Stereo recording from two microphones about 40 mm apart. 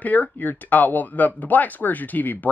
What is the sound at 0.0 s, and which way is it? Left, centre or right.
Speech, left.